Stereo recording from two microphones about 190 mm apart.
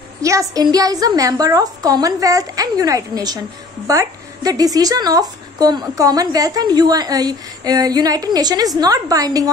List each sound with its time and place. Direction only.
0.2 s a woman's voice: 15° right (ahead or behind)